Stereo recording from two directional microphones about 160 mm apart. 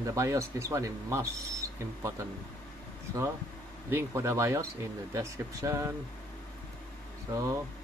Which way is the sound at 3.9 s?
15° right (ahead or behind).